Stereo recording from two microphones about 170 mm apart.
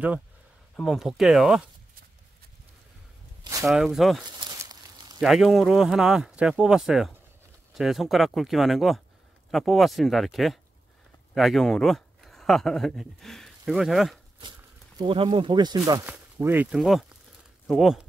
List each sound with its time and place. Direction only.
0.7 s speech: centre (ahead or behind)
3.6 s speech: centre (ahead or behind)
4.2 s a sound: 25° right (ahead or behind)
5.2 s speech: centre (ahead or behind)
15.0 s speech: 30° right (ahead or behind)
16.1 s speech: 10° right (ahead or behind)